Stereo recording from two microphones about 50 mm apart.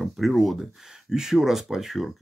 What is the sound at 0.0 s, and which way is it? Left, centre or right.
Speech, centre.